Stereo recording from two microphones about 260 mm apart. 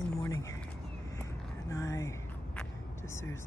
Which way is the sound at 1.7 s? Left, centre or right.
Centre.